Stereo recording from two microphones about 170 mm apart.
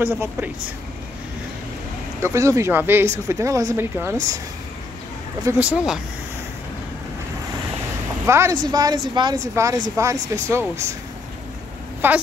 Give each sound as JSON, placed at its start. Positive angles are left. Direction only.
{"t": 0.0, "sound": "speech", "side_deg": -10}
{"t": 2.2, "sound": "speech", "side_deg": -15}
{"t": 5.5, "sound": "speech", "side_deg": -20}
{"t": 8.3, "sound": "speech", "side_deg": -15}
{"t": 12.0, "sound": "speech", "side_deg": -10}